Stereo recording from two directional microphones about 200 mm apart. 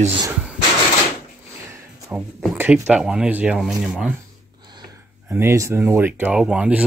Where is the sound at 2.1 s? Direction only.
10° right (ahead or behind).